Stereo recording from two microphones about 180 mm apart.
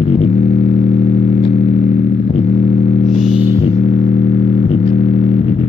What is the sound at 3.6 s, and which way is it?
Music, 35° left (ahead or behind).